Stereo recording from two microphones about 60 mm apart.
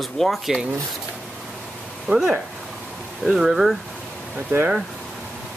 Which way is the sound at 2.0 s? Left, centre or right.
Centre.